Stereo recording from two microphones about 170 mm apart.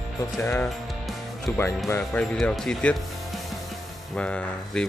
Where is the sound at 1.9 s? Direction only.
5° left (ahead or behind).